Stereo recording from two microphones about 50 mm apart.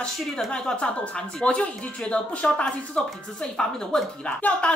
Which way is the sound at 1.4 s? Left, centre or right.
Left.